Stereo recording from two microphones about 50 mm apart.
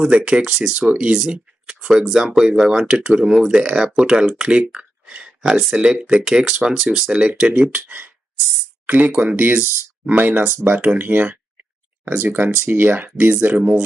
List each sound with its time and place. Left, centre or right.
0.0 s speech: right
7.8 s speech: right
9.5 s speech: right
10.1 s speech: right
13.6 s speech: right